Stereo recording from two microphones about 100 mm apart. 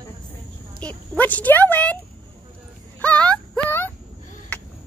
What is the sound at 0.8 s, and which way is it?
Speech, 15° left (ahead or behind).